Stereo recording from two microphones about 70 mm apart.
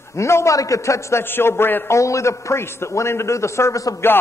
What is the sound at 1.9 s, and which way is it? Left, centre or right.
A man's voice, left.